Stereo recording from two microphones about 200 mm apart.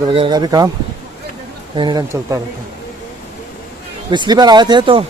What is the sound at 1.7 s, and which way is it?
Speech, 20° right (ahead or behind).